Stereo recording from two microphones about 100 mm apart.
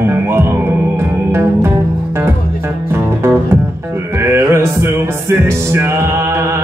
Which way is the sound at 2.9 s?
25° right (ahead or behind).